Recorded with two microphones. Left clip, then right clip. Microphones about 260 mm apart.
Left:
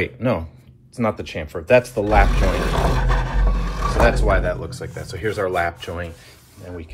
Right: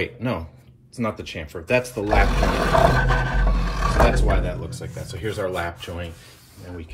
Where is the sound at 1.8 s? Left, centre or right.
Centre.